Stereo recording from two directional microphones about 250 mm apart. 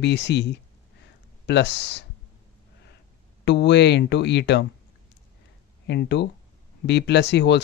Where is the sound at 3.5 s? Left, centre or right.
Left.